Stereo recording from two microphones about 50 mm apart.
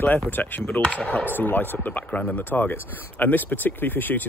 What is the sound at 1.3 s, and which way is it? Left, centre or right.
Speech, left.